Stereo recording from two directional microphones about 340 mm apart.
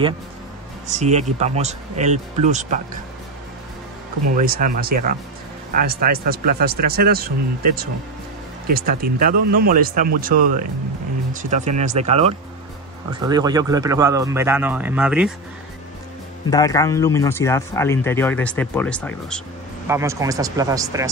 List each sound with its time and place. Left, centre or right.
0.8 s speech: centre
4.4 s speech: right; by 15.3 s centre
16.4 s speech: centre
19.9 s speech: centre